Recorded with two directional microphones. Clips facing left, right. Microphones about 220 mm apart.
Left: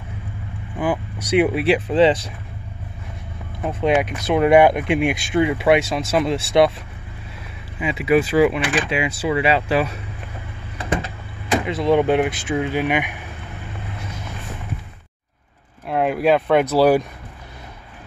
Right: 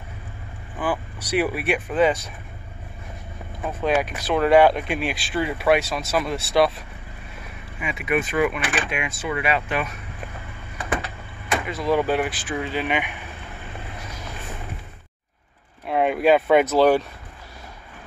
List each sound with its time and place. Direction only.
0.7 s speech: 20° left (ahead or behind)
3.6 s speech: 20° left (ahead or behind)
7.8 s speech: 30° left (ahead or behind)
11.6 s speech: 25° left (ahead or behind)
15.9 s speech: centre (ahead or behind)